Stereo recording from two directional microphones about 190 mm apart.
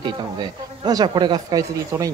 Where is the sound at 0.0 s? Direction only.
20° right (ahead or behind).